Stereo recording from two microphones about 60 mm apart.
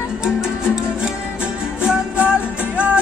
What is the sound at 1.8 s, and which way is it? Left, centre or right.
Music, right.